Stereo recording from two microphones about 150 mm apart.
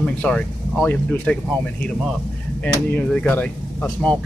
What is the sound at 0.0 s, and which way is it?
Speech, 5° left (ahead or behind).